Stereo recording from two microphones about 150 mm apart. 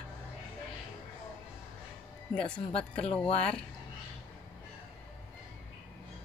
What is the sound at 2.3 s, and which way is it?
Speech, 5° left (ahead or behind).